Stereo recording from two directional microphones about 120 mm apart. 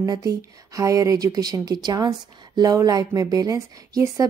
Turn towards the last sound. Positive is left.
turn(degrees=-30)  # may be behind; listen again after turning